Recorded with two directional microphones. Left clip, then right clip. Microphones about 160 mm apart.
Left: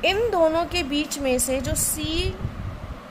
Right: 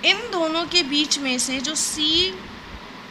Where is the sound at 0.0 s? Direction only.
45° left (ahead or behind).